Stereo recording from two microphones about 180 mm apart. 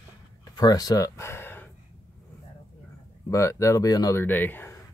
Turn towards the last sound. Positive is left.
turn(degrees=10)  # may be behind; listen again after turning